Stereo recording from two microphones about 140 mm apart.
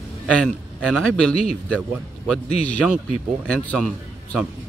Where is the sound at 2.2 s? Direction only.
5° left (ahead or behind).